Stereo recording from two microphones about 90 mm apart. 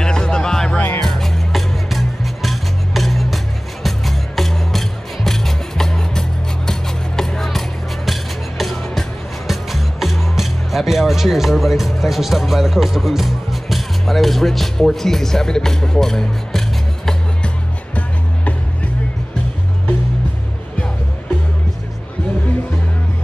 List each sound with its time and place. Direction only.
0.0 s music: 10° left (ahead or behind)